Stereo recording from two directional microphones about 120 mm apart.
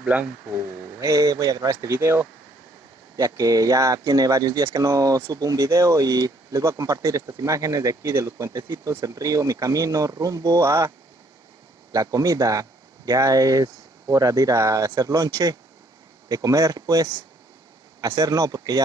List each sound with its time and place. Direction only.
0.0 s speech: 10° right (ahead or behind)
0.9 s speech: 25° right (ahead or behind)
11.9 s speech: 30° right (ahead or behind)